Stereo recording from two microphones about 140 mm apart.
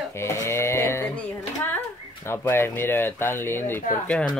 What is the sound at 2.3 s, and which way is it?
Speech, 15° left (ahead or behind).